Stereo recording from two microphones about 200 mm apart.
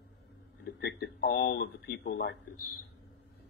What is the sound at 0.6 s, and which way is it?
Speech, 55° left (ahead or behind).